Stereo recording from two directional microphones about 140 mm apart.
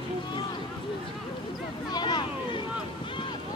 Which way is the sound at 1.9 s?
30° left (ahead or behind).